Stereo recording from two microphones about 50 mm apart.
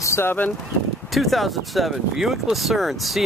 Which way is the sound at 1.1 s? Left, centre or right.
Centre.